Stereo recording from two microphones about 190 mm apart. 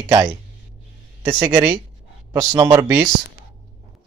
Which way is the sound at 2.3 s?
20° right (ahead or behind).